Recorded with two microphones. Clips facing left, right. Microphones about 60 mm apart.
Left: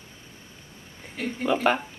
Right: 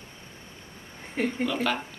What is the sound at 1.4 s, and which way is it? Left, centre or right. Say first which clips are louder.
Speech: left 8 dB; left.